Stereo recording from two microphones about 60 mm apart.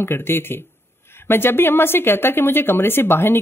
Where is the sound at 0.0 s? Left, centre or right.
Left.